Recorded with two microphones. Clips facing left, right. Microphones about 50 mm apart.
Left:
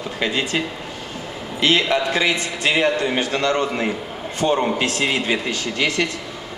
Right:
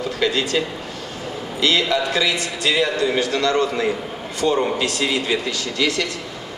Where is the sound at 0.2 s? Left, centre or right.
Left.